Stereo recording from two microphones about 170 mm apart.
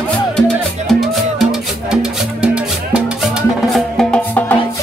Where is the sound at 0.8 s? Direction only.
Centre (ahead or behind).